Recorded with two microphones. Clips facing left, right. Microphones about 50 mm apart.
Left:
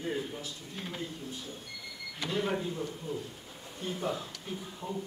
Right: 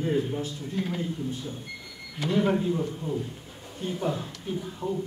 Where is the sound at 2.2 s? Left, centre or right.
Right.